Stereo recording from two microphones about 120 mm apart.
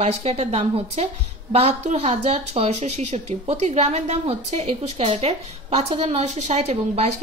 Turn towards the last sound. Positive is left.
turn(degrees=-60)  # may be behind; listen again after turning